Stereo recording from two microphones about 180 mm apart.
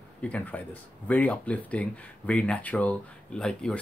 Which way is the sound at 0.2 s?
10° left (ahead or behind).